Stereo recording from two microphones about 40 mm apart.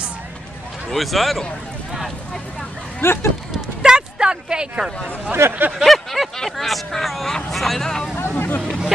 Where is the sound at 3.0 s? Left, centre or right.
Left.